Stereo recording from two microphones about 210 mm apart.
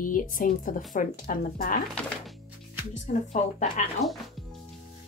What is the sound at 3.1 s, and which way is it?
Speech, 35° left (ahead or behind).